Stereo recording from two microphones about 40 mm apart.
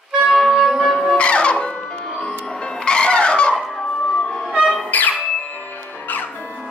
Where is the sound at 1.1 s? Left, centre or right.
Left.